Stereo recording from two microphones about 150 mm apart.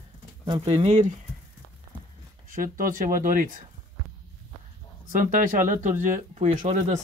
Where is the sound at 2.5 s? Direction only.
65° right (ahead or behind).